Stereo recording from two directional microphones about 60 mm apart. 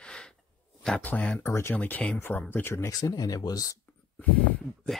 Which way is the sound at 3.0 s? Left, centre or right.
Left.